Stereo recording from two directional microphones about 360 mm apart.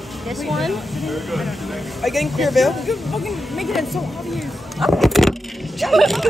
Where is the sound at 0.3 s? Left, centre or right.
Centre.